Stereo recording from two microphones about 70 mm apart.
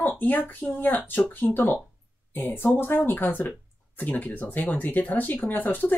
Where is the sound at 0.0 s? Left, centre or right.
Left.